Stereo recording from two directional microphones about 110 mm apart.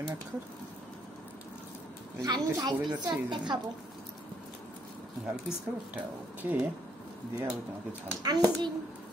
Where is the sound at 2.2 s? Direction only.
40° right (ahead or behind).